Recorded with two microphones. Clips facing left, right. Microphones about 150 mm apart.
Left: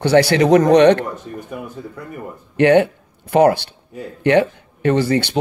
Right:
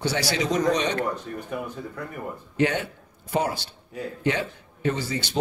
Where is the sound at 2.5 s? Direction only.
70° left (ahead or behind).